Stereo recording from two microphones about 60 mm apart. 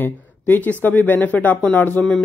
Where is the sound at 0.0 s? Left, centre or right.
Left.